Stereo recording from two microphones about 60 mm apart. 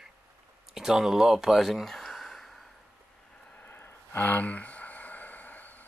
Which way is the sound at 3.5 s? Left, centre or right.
Left.